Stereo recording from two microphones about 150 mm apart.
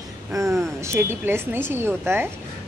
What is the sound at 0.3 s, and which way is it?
A woman's voice, 20° right (ahead or behind).